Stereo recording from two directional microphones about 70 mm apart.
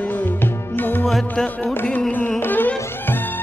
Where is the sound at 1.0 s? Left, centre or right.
Centre.